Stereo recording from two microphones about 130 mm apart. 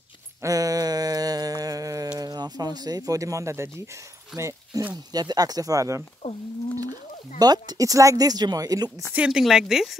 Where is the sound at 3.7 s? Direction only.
25° right (ahead or behind).